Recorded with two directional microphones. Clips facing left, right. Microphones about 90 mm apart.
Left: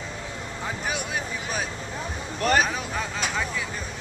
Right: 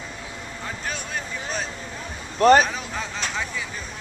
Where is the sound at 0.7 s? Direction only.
10° left (ahead or behind).